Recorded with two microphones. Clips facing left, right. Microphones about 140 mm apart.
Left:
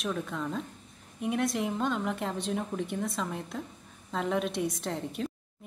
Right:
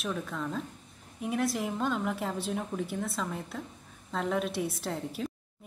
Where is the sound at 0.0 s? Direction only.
Centre (ahead or behind).